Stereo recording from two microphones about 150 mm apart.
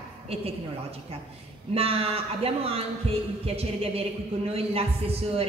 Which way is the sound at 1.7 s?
40° right (ahead or behind).